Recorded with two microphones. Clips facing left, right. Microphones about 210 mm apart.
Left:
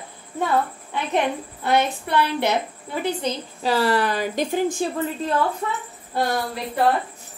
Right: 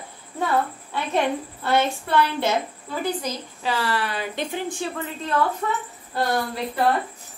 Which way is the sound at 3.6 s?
40° left (ahead or behind).